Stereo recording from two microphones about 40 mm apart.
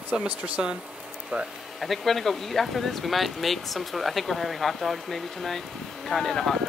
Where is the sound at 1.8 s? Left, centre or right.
Centre.